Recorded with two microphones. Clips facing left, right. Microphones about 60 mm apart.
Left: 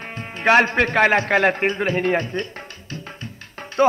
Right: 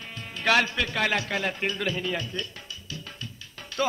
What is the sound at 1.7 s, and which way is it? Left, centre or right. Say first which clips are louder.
Speech: left 7 dB; left.